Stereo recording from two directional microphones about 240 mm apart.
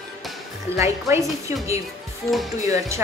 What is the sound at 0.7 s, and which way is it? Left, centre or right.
Speech, centre.